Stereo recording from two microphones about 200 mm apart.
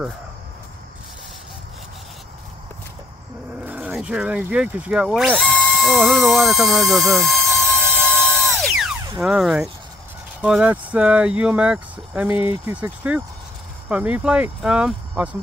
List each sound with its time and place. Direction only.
3.6 s speech: 5° right (ahead or behind)
8.0 s music: 5° left (ahead or behind)
9.2 s speech: 5° right (ahead or behind)